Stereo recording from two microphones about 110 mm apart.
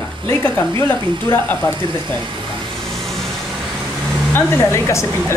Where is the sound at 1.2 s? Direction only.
20° left (ahead or behind).